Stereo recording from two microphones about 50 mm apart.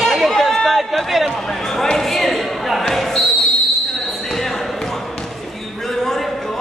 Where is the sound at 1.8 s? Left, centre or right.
Centre.